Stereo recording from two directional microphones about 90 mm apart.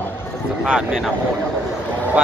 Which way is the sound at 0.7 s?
5° right (ahead or behind).